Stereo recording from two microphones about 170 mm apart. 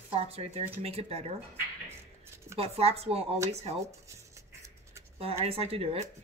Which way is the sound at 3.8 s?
15° right (ahead or behind).